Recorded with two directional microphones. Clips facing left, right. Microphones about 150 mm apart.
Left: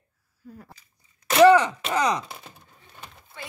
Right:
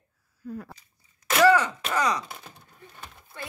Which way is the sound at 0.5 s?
90° right.